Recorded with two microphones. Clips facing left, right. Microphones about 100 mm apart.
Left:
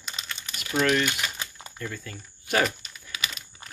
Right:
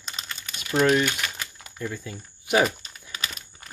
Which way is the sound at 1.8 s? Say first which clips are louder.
Right 4 dB; 15° right (ahead or behind).